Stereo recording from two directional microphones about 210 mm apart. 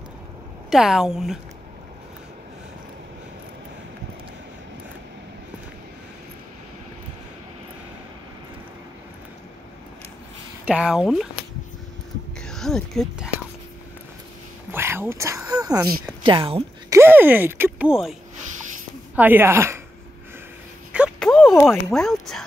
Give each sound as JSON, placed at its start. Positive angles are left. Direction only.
{"t": 0.7, "sound": "speech", "side_deg": 0}
{"t": 10.6, "sound": "speech", "side_deg": -5}
{"t": 12.4, "sound": "speech", "side_deg": 0}
{"t": 14.7, "sound": "speech", "side_deg": -10}
{"t": 16.9, "sound": "speech", "side_deg": -10}
{"t": 19.1, "sound": "speech", "side_deg": -10}
{"t": 20.9, "sound": "a sound", "side_deg": 0}
{"t": 21.6, "sound": "speech", "side_deg": 0}